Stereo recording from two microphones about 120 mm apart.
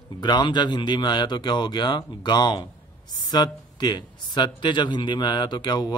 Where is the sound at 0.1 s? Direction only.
35° left (ahead or behind).